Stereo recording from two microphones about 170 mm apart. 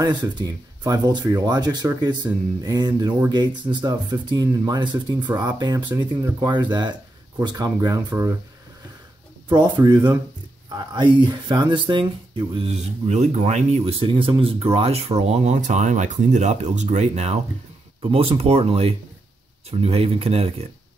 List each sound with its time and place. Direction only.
0.0 s speech: 25° right (ahead or behind)
9.5 s speech: 25° right (ahead or behind)